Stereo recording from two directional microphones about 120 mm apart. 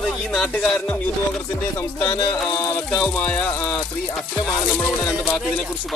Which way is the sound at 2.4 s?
35° left (ahead or behind).